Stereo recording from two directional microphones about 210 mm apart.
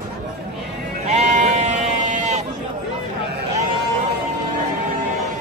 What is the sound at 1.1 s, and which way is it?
Sheep, 35° right (ahead or behind).